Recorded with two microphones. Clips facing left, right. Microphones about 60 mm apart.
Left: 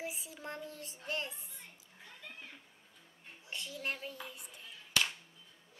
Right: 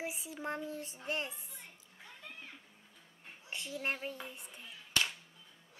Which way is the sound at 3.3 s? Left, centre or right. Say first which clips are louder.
Right 2 dB; right.